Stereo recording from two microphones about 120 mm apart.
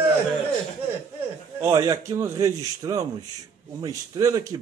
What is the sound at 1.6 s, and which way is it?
Speech, 30° right (ahead or behind).